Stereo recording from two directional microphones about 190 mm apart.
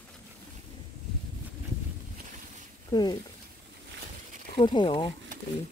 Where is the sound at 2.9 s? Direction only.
20° left (ahead or behind).